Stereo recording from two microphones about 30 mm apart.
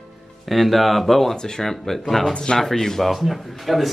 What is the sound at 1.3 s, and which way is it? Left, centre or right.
Speech, left.